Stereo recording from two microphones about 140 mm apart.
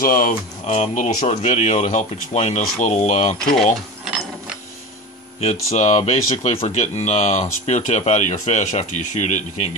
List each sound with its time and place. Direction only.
0.0 s speech: 90° left
0.7 s speech: 55° left (ahead or behind)
5.4 s speech: 50° left (ahead or behind)